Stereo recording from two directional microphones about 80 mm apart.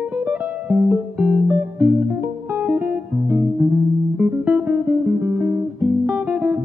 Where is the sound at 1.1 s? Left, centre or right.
Right.